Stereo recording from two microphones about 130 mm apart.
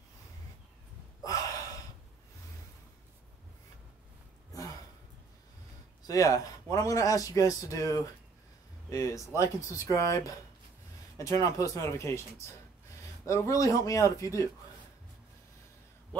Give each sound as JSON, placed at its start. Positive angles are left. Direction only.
{"t": 1.2, "sound": "gasp", "side_deg": 25}
{"t": 6.0, "sound": "speech", "side_deg": 25}
{"t": 11.4, "sound": "speech", "side_deg": 25}